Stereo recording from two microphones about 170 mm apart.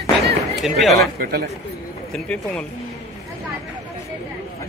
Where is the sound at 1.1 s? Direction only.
60° right (ahead or behind).